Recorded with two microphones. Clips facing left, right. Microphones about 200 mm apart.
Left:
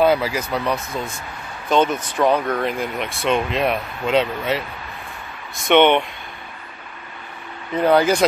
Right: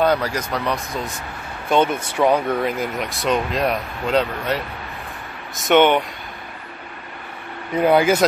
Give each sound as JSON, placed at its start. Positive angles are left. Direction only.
{"t": 0.0, "sound": "speech", "side_deg": 5}
{"t": 1.7, "sound": "speech", "side_deg": -10}
{"t": 5.7, "sound": "speech", "side_deg": -5}
{"t": 7.8, "sound": "speech", "side_deg": -10}